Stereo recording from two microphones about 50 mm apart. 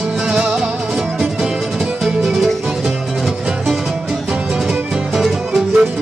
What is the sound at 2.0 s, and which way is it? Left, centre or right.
Music, centre.